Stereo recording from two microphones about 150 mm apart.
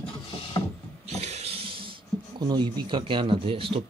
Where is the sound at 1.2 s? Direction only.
45° right (ahead or behind).